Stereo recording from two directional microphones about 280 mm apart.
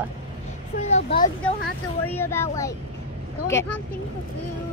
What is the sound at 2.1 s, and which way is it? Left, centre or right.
Speech, centre.